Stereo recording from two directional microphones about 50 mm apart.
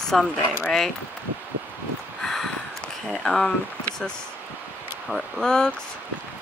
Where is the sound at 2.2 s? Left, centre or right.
Centre.